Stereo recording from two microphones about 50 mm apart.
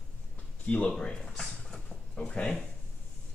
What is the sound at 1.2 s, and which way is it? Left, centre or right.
Speech, centre.